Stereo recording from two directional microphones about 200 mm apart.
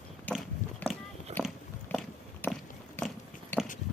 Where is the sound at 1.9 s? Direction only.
5° left (ahead or behind).